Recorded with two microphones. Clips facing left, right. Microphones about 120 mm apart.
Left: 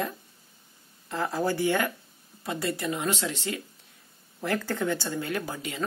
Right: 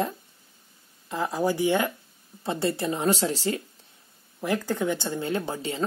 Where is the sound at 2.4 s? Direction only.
30° right (ahead or behind).